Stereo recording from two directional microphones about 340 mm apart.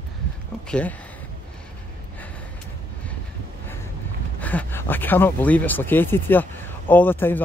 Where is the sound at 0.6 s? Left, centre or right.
Centre.